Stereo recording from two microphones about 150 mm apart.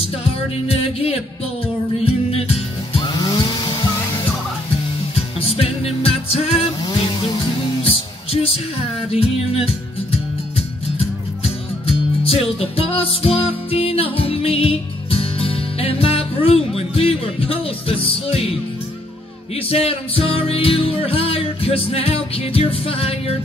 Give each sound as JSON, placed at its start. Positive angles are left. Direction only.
{"t": 0.7, "sound": "music", "side_deg": 40}
{"t": 5.4, "sound": "music", "side_deg": 40}
{"t": 7.8, "sound": "music", "side_deg": 40}
{"t": 11.4, "sound": "music", "side_deg": 40}
{"t": 19.7, "sound": "music", "side_deg": 40}